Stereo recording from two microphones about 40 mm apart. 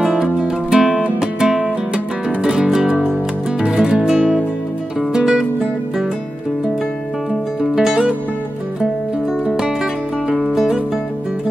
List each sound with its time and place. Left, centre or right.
0.0 s music: centre
7.7 s music: centre